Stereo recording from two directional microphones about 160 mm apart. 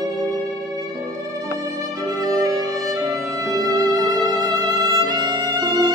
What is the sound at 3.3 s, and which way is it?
Violin, 20° right (ahead or behind).